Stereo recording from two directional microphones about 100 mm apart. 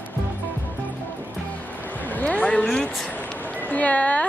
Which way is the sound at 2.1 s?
15° left (ahead or behind).